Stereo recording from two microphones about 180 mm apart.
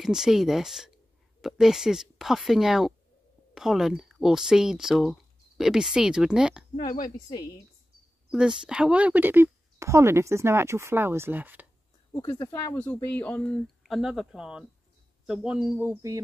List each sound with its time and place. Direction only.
0.0 s speech: 5° right (ahead or behind)
6.8 s a woman's voice: 20° left (ahead or behind)
8.3 s speech: 5° right (ahead or behind)
12.1 s speech: 20° left (ahead or behind); by 16.2 s 15° right (ahead or behind)